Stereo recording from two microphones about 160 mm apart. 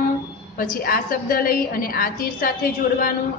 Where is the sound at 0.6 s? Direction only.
65° left (ahead or behind).